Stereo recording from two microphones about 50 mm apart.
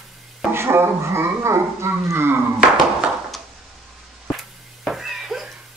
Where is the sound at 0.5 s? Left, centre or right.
Right.